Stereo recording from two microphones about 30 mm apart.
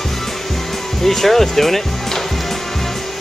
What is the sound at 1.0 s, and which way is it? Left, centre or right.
Speech, centre.